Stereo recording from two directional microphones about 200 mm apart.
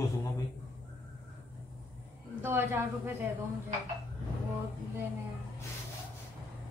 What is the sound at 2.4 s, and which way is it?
Speech, 10° right (ahead or behind).